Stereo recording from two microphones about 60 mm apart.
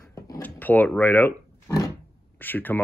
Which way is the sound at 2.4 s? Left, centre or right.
Left.